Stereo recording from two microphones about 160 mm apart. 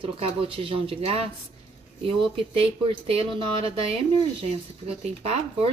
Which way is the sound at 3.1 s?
35° right (ahead or behind).